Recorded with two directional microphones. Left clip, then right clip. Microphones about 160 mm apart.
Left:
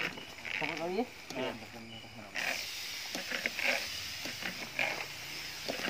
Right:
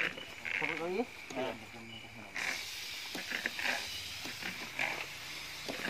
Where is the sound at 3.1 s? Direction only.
35° left (ahead or behind).